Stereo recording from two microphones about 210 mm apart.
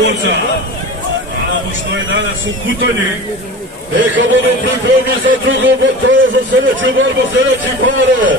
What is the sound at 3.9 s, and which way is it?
Speech, 65° right (ahead or behind).